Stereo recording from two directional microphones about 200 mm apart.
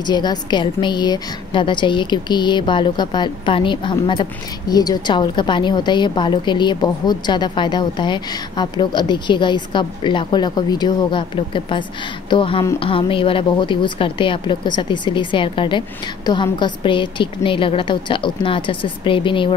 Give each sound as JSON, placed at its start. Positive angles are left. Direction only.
{"t": 0.0, "sound": "a woman's voice", "side_deg": 20}